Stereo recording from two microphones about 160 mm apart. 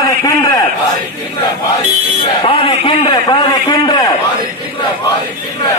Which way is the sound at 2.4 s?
30° left (ahead or behind).